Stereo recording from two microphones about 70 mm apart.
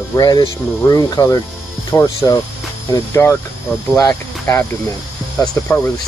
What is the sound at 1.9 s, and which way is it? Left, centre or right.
Speech, left.